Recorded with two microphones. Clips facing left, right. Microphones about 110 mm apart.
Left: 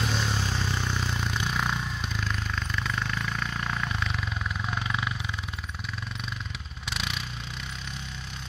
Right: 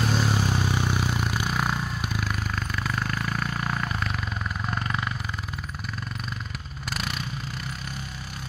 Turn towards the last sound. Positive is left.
turn(degrees=0)  # may be behind; listen again after turning